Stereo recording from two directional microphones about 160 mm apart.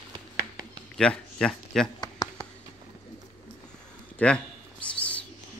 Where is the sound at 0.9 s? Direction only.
5° left (ahead or behind).